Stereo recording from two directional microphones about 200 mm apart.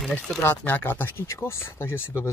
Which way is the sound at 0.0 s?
5° left (ahead or behind).